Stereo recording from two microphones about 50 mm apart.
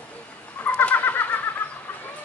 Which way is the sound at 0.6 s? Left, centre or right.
Left.